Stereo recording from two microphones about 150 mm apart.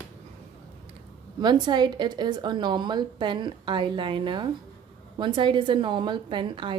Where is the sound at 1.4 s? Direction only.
30° right (ahead or behind).